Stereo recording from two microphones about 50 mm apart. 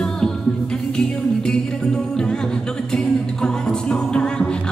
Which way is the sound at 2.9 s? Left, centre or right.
Centre.